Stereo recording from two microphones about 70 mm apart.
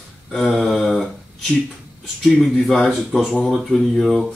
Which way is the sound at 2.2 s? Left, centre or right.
Centre.